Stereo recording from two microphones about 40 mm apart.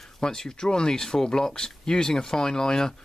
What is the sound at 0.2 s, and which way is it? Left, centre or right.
Speech, centre.